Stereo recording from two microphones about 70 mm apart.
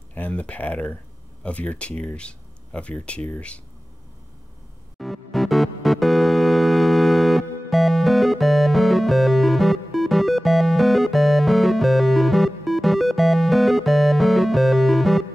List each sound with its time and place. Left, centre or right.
0.1 s speech: centre
4.9 s music: centre